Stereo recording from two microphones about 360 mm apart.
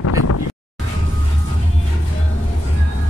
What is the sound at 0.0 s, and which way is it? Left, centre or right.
Wind noise, left.